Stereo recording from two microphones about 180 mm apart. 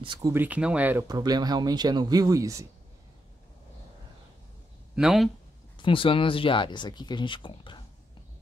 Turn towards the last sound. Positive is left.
turn(degrees=25)  # may be behind; listen again after turning